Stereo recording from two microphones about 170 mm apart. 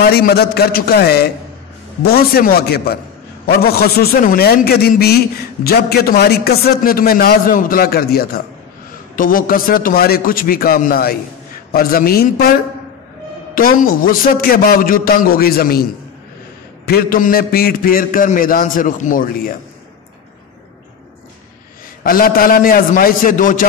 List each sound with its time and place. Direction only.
0.0 s a man's voice: 65° left (ahead or behind)
9.1 s a man's voice: 55° left (ahead or behind)
13.6 s a man's voice: 55° left (ahead or behind)
16.8 s a man's voice: 60° left (ahead or behind)
22.0 s a man's voice: 60° left (ahead or behind)